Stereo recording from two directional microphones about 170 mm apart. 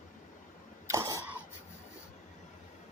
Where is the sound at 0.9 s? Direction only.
20° right (ahead or behind).